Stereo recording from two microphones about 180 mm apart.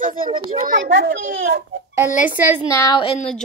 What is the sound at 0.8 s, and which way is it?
Speech, 75° right (ahead or behind).